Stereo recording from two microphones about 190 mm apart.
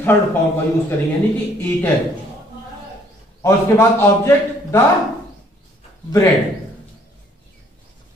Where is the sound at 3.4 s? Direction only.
15° left (ahead or behind).